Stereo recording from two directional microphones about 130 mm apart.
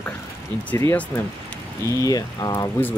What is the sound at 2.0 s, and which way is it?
Speech, 30° left (ahead or behind).